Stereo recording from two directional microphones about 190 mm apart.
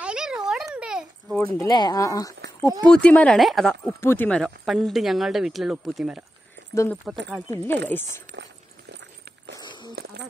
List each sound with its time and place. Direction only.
0.0 s a sound: 5° right (ahead or behind)
1.4 s speech: 20° left (ahead or behind)
2.9 s speech: 5° left (ahead or behind)
4.0 s speech: 10° left (ahead or behind); by 6.2 s 5° right (ahead or behind)
6.7 s speech: 15° left (ahead or behind)
9.6 s a sound: 25° left (ahead or behind)